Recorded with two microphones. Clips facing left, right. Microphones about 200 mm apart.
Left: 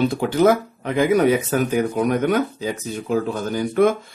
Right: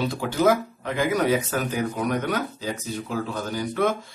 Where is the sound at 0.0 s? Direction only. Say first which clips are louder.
Left 5 dB; 55° left (ahead or behind).